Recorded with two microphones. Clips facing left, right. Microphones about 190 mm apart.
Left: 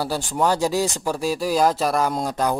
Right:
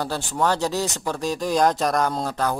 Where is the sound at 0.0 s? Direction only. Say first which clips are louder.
Left 2 dB; 15° left (ahead or behind).